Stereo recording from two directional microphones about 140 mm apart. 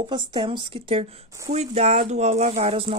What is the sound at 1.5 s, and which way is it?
Speech, 50° right (ahead or behind).